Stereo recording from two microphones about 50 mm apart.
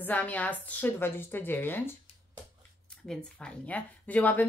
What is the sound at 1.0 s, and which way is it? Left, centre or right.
Speech, left.